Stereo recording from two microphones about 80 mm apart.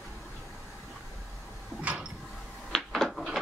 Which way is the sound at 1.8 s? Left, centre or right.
Centre.